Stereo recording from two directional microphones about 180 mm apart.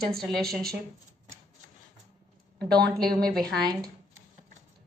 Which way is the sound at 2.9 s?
55° right (ahead or behind).